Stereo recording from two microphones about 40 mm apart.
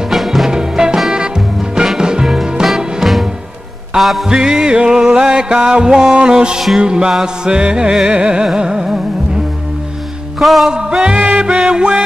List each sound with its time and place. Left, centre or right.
0.1 s music: centre
0.5 s music: centre
2.0 s music: centre
2.6 s music: centre
4.3 s music: centre
10.4 s music: centre
10.7 s music: centre